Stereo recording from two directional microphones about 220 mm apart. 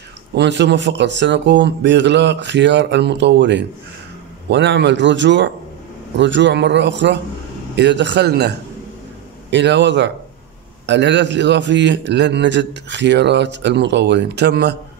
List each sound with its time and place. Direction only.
0.3 s a man's voice: 55° right (ahead or behind)